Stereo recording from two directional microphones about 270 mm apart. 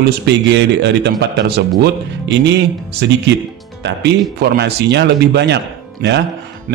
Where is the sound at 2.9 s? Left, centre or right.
Right.